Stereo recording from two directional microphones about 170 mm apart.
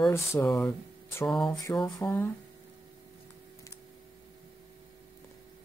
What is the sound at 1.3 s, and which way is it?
Mantra, 5° left (ahead or behind).